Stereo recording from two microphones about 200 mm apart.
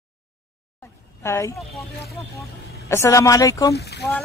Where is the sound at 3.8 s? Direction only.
55° left (ahead or behind).